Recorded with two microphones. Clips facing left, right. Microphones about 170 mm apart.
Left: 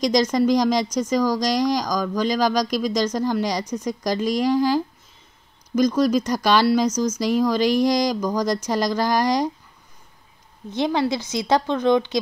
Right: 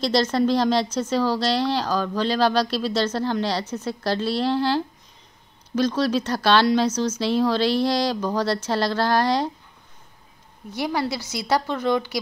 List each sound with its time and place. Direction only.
0.0 s speech: 15° left (ahead or behind)
10.7 s a woman's voice: 20° left (ahead or behind)